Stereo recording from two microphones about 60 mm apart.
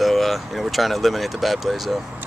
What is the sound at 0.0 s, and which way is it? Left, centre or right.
Speech, centre.